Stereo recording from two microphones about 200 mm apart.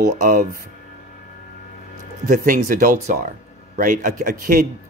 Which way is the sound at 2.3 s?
40° right (ahead or behind).